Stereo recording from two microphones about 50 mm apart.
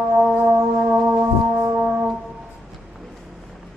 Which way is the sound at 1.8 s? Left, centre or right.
Right.